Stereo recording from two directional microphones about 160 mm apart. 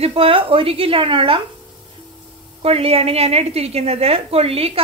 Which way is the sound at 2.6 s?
40° right (ahead or behind).